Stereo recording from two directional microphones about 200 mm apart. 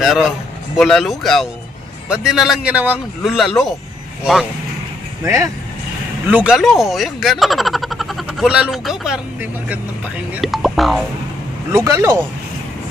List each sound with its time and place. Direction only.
0.0 s a man's voice: centre (ahead or behind)
5.2 s a man's voice: 15° right (ahead or behind)
11.7 s speech: 15° right (ahead or behind)